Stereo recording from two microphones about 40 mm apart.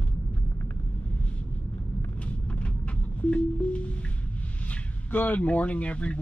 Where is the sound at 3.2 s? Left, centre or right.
Left.